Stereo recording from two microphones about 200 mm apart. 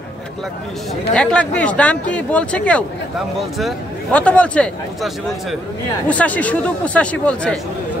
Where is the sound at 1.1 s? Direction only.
5° left (ahead or behind).